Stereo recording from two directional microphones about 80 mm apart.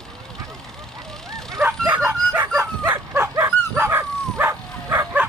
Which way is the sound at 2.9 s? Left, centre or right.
Right.